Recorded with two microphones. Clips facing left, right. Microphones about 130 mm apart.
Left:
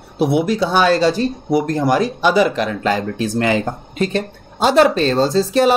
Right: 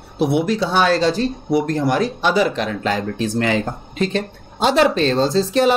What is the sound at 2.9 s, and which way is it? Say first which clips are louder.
Speech: left 2 dB; 5° left (ahead or behind).